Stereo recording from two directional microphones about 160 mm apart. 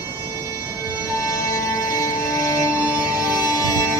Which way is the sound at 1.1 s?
20° left (ahead or behind).